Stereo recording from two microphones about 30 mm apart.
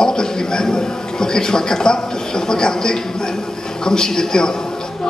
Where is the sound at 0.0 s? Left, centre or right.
Left.